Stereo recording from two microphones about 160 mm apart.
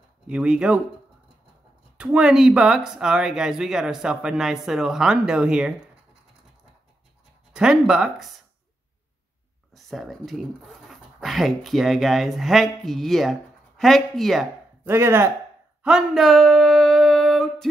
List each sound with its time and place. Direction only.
0.3 s speech: 5° right (ahead or behind)
2.0 s speech: 5° right (ahead or behind)
7.5 s speech: 5° right (ahead or behind)
9.8 s speech: centre (ahead or behind)
14.9 s speech: 15° right (ahead or behind)
15.8 s a sound: centre (ahead or behind)